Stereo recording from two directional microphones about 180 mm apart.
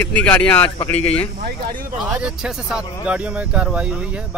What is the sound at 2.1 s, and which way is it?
Speech, 5° right (ahead or behind).